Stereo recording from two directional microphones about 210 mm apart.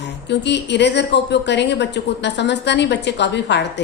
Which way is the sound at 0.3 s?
55° left (ahead or behind).